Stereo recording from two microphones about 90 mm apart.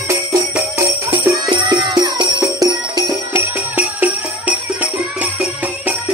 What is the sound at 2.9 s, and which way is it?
Music, 45° right (ahead or behind).